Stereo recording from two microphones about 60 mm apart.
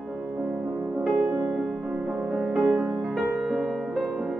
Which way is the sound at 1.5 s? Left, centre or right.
Centre.